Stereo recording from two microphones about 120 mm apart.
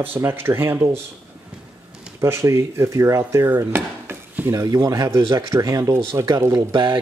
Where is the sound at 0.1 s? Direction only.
20° right (ahead or behind).